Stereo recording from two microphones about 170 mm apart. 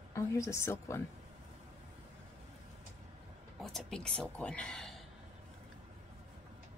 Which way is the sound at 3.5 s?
Centre (ahead or behind).